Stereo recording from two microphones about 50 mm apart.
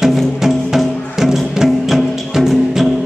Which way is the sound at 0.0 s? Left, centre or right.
Centre.